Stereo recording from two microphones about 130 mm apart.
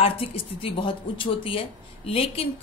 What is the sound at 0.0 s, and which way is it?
Speech, 45° left (ahead or behind).